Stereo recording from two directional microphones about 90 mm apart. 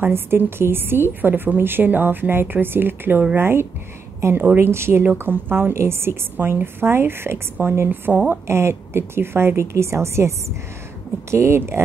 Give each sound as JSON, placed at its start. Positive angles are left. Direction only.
{"t": 0.0, "sound": "a woman's voice", "side_deg": -25}